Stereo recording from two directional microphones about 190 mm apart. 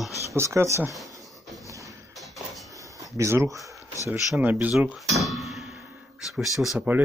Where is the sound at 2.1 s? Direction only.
Centre (ahead or behind).